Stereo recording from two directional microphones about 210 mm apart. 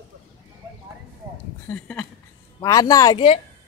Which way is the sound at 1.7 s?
5° left (ahead or behind).